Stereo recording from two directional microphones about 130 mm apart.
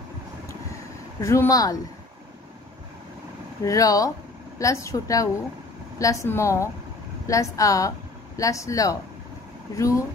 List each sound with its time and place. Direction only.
1.2 s speech: 25° left (ahead or behind)
3.6 s speech: 25° left (ahead or behind)